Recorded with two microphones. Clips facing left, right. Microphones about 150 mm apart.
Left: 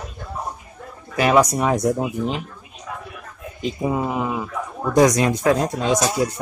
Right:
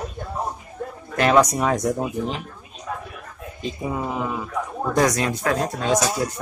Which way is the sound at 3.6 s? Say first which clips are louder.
Left 5 dB; 15° left (ahead or behind).